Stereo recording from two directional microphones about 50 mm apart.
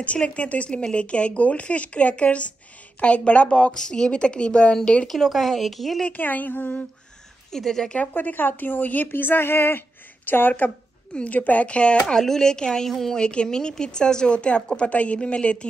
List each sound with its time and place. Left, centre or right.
0.0 s speech: left
3.7 s speech: centre
5.0 s speech: centre
6.1 s speech: left
7.5 s speech: centre
8.1 s speech: left
11.1 s speech: left
12.2 s speech: centre
13.2 s speech: centre